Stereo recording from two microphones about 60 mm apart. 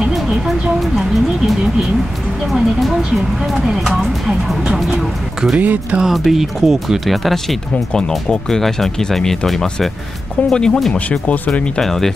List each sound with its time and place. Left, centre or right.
0.0 s a sound: centre
2.5 s a sound: centre
4.9 s music: centre
5.6 s speech: right
6.0 s speech: centre
10.9 s speech: left
11.8 s speech: centre